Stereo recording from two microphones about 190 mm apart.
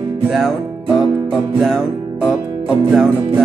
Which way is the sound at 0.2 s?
Centre (ahead or behind).